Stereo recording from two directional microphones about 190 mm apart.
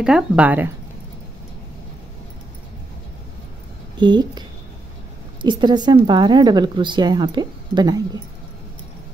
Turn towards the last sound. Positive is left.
turn(degrees=-20)  # may be behind; listen again after turning